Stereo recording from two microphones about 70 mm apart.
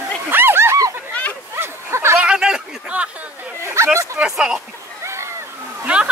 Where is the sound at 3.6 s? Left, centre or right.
Right.